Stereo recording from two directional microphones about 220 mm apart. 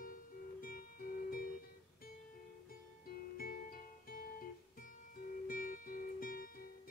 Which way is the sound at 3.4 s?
40° left (ahead or behind).